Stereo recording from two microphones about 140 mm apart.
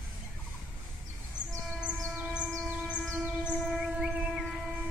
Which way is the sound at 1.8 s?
10° right (ahead or behind).